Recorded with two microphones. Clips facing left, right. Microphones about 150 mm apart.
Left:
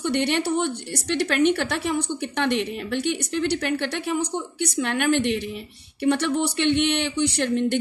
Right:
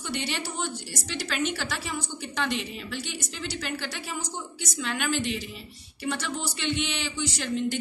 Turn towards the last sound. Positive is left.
turn(degrees=60)  # may be behind; listen again after turning